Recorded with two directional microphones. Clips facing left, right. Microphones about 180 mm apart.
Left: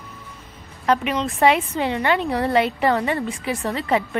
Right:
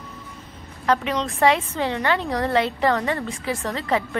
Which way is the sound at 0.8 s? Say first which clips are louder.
Left 1 dB; 15° left (ahead or behind).